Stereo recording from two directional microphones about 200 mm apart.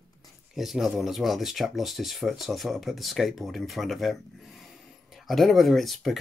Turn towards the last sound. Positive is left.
turn(degrees=0)  # may be behind; listen again after turning